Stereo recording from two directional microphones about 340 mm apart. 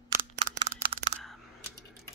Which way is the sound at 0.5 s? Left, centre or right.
Right.